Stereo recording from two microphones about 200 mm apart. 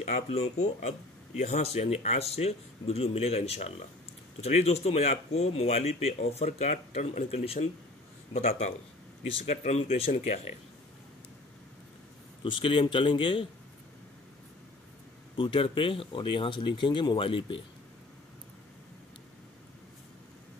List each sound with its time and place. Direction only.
0.0 s speech: 35° left (ahead or behind)
12.4 s speech: 25° left (ahead or behind)
15.3 s speech: 25° left (ahead or behind)